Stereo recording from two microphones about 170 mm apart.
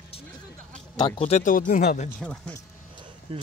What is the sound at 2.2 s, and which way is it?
Speech, 5° left (ahead or behind).